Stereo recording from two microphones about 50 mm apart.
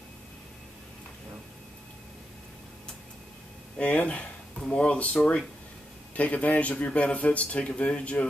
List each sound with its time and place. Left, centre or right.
3.7 s a sound: left
4.6 s speech: centre
6.1 s speech: left